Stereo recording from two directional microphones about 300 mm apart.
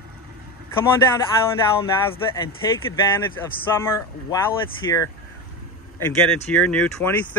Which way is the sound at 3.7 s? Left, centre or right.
Centre.